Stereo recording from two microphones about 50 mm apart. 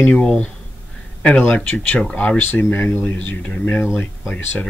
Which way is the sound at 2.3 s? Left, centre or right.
Left.